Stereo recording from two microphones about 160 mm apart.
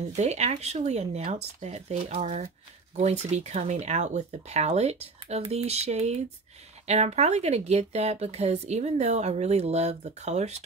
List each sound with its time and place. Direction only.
0.1 s speech: 45° right (ahead or behind)